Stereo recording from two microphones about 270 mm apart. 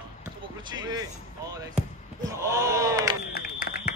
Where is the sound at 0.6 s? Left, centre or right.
Centre.